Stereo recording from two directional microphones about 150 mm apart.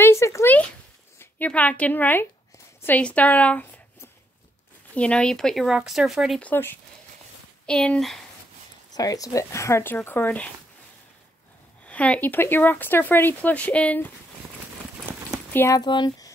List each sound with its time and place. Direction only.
0.0 s a sound: 20° left (ahead or behind)
1.2 s a woman's voice: 10° left (ahead or behind)
6.4 s speech: 15° left (ahead or behind)
8.9 s speech: 25° left (ahead or behind)
11.8 s speech: 10° left (ahead or behind)
15.5 s speech: 15° left (ahead or behind)
15.8 s speech: 30° left (ahead or behind)